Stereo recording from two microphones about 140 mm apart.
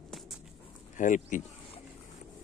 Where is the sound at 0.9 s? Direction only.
65° left (ahead or behind).